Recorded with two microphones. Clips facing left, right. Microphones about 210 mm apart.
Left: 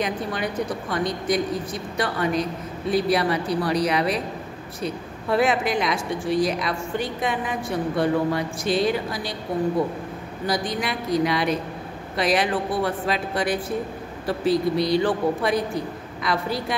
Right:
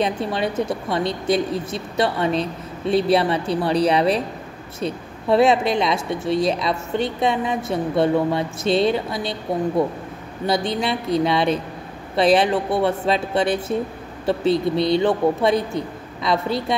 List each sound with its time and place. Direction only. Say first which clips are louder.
0.0 s speech: right 4 dB; 25° right (ahead or behind)
10.4 s speech: right 4 dB; 25° right (ahead or behind)